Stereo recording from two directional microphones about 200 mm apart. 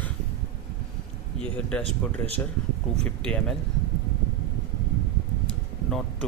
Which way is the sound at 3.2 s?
5° left (ahead or behind).